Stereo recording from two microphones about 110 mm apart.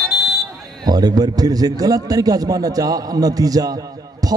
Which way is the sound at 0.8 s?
35° right (ahead or behind).